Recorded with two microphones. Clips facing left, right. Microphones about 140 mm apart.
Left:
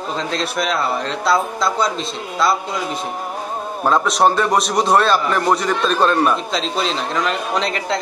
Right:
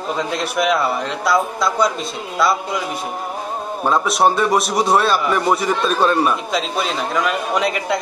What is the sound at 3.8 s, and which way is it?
A man's voice, 5° right (ahead or behind).